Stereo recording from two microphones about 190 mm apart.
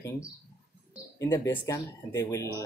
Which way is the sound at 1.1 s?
15° left (ahead or behind).